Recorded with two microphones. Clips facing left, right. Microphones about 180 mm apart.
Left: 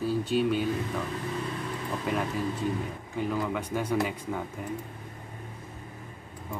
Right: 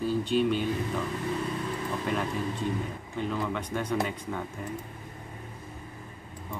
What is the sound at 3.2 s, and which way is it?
A man's voice, 10° left (ahead or behind).